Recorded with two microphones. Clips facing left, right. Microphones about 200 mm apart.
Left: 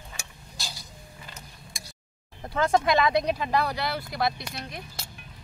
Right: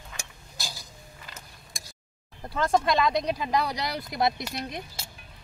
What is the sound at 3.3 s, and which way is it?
Speech, 15° right (ahead or behind).